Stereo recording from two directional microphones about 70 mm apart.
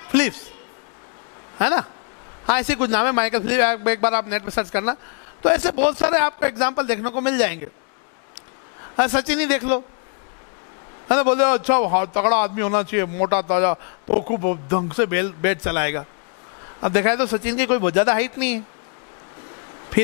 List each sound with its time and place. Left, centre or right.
0.1 s a sound: centre
1.6 s a man's voice: centre
8.9 s speech: centre
11.1 s a man's voice: centre